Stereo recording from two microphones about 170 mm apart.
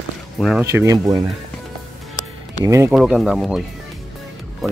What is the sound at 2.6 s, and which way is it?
Speech, 15° right (ahead or behind).